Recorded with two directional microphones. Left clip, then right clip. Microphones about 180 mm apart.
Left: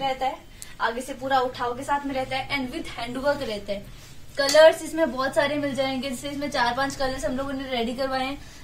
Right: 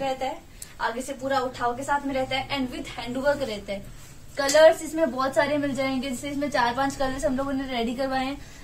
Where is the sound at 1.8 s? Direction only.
Centre (ahead or behind).